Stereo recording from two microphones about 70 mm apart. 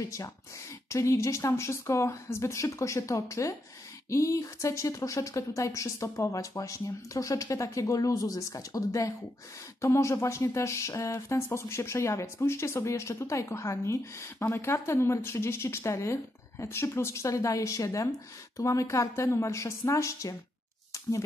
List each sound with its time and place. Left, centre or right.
0.0 s speech: left
9.8 s speech: left